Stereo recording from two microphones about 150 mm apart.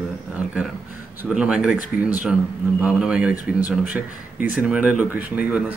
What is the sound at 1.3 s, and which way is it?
Speech, 5° right (ahead or behind).